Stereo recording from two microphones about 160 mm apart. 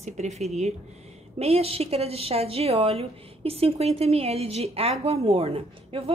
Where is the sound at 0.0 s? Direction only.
45° right (ahead or behind).